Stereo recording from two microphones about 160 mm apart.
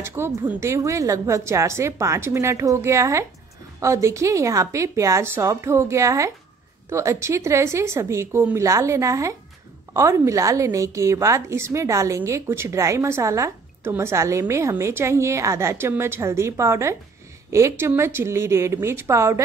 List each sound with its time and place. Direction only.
0.0 s a woman's voice: 15° right (ahead or behind)